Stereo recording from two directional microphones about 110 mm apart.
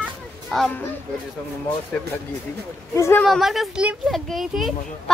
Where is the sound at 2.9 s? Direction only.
25° left (ahead or behind).